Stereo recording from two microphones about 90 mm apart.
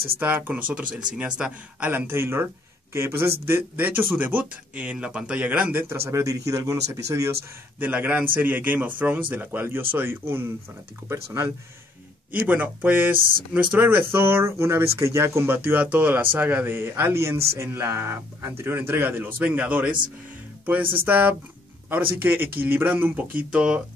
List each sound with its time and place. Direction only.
0.2 s a man's voice: 20° right (ahead or behind); by 7.2 s 35° right (ahead or behind)
7.8 s speech: 20° right (ahead or behind)
12.3 s speech: 20° right (ahead or behind)
21.0 s speech: 20° right (ahead or behind)